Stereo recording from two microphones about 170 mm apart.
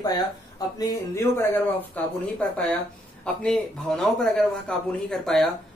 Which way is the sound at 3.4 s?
5° left (ahead or behind).